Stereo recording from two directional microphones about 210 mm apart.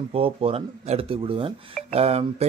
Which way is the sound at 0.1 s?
25° right (ahead or behind).